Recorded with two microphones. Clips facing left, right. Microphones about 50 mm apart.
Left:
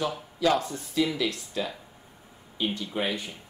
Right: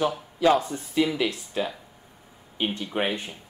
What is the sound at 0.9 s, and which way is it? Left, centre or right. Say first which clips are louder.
A man's voice: right 3 dB; right.